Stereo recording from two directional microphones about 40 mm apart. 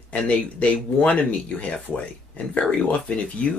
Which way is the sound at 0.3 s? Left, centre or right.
Left.